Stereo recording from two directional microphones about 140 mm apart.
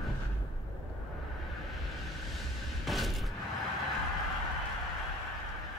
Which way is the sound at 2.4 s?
Centre (ahead or behind).